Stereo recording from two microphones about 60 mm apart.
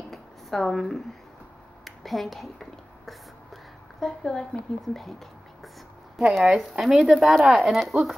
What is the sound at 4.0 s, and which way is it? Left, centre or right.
Speech, centre.